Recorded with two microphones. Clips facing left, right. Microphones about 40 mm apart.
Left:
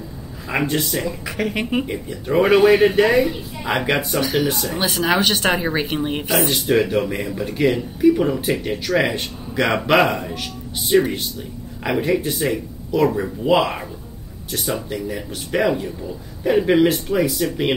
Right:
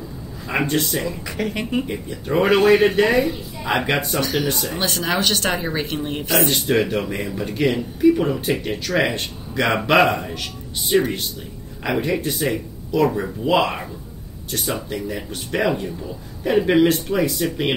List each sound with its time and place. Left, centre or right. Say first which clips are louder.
0.5 s speech: even; centre
1.5 s a woman's voice: left 1 dB; centre
1.9 s a woman's voice: left 1 dB; centre
6.3 s speech: even; centre
15.5 s speech: left 2 dB; centre